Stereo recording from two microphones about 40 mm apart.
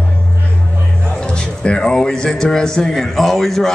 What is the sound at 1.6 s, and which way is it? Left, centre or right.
Speech, left.